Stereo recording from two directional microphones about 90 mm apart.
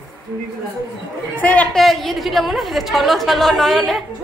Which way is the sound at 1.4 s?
15° left (ahead or behind).